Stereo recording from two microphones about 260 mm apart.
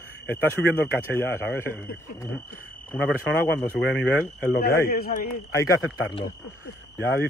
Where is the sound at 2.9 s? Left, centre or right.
Centre.